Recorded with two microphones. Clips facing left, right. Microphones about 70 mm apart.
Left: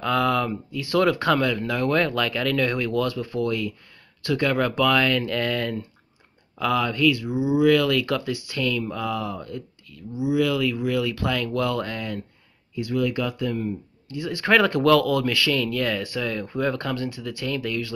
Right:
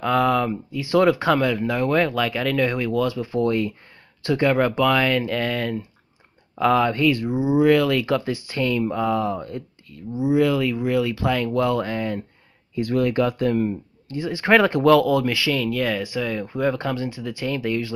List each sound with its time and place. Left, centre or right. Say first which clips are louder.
0.0 s speech: right 3 dB; centre
3.3 s speech: right 6 dB; right; by 5.9 s centre
6.6 s speech: right 3 dB; right
12.7 s speech: right 4 dB; right
14.1 s speech: right 3 dB; right